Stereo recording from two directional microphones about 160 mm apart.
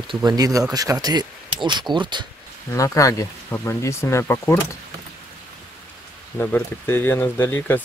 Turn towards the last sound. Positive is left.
turn(degrees=10)  # may be behind; listen again after turning